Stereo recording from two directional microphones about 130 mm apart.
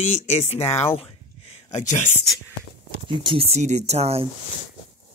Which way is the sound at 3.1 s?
40° right (ahead or behind).